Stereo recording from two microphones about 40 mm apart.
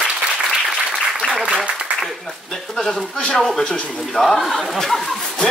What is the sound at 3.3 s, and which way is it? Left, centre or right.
Speech, centre.